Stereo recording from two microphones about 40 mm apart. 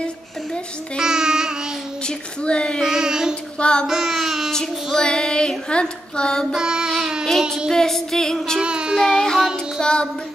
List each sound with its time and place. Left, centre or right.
1.0 s child singing: centre
2.0 s a sound: left
2.8 s child singing: centre
3.5 s child singing: left
3.8 s a sound: centre
4.9 s child singing: left
6.5 s child singing: centre
7.7 s music: centre
8.5 s child singing: right
8.9 s child singing: centre
9.8 s child singing: left